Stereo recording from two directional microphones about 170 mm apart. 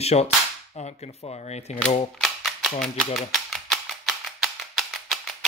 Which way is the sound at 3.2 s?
Centre (ahead or behind).